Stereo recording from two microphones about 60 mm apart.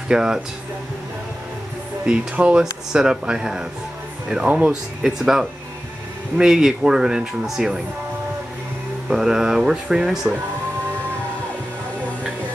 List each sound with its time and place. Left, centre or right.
0.1 s speech: centre
2.0 s speech: centre
9.1 s speech: centre